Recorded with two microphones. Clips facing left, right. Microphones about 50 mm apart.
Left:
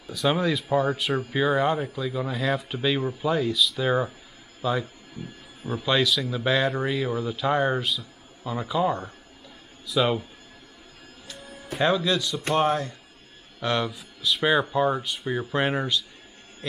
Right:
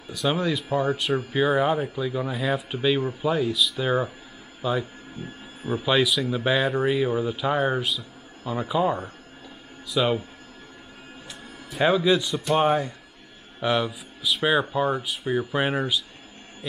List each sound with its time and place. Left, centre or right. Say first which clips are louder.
0.1 s speech: left 1 dB; centre
8.5 s speech: right 1 dB; centre
9.8 s speech: even; centre
11.8 s speech: right 3 dB; centre